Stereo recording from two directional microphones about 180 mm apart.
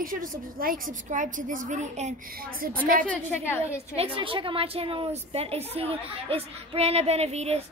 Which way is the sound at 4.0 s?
30° right (ahead or behind).